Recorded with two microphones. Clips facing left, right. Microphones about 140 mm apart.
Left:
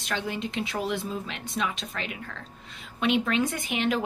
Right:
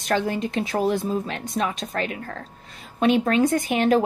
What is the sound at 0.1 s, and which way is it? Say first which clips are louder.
A woman's voice: right 8 dB; 45° right (ahead or behind).